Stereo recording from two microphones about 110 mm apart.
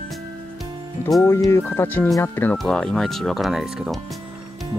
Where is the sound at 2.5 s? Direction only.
5° left (ahead or behind).